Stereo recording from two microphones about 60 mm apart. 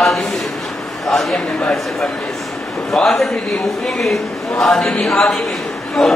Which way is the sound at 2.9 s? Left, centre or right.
Centre.